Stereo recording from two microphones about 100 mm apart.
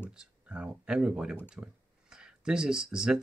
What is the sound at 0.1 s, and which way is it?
Speech, 10° right (ahead or behind).